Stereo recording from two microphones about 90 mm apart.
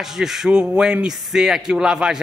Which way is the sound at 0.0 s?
5° right (ahead or behind).